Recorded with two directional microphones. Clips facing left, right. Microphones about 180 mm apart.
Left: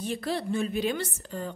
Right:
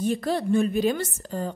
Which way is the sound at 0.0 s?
45° right (ahead or behind).